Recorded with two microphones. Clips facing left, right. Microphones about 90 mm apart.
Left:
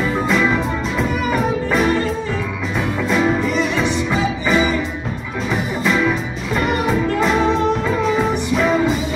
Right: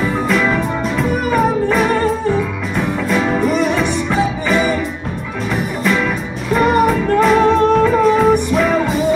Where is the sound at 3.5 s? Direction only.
50° right (ahead or behind).